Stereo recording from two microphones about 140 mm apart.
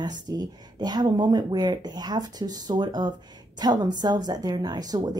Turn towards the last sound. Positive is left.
turn(degrees=-30)  # may be behind; listen again after turning